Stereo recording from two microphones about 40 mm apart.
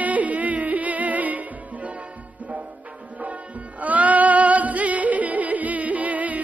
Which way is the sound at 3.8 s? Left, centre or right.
Right.